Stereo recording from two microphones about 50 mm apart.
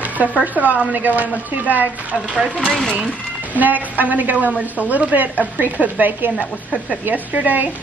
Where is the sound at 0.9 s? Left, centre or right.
Right.